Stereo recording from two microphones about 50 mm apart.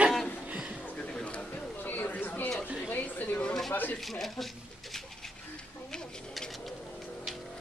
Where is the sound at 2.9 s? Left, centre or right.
Left.